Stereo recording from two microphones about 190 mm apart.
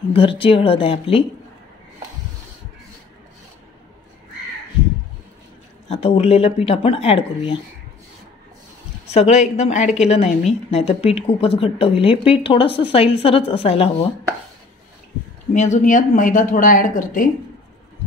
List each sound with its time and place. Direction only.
0.1 s a woman's voice: 30° left (ahead or behind)
5.9 s speech: 30° left (ahead or behind)
9.1 s a woman's voice: 35° left (ahead or behind)
15.5 s speech: 40° left (ahead or behind)